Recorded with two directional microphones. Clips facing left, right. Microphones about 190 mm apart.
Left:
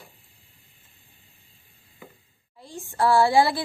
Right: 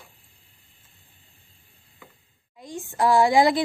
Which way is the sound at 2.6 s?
15° right (ahead or behind).